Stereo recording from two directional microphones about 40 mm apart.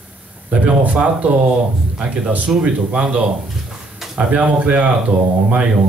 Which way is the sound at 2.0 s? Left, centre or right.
Right.